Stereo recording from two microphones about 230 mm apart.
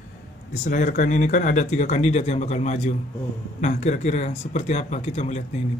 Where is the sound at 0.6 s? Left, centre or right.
Left.